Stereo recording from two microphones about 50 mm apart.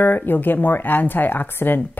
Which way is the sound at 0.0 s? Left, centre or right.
Left.